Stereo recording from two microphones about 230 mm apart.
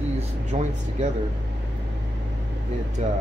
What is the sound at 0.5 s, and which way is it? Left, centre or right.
Speech, right.